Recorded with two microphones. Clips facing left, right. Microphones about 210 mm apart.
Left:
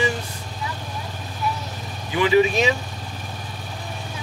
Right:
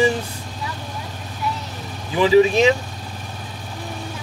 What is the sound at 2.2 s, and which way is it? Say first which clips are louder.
Speech: right 4 dB; 35° right (ahead or behind).